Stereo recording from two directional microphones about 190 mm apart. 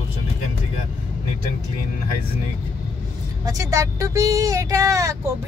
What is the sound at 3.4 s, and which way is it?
Speech, 15° right (ahead or behind).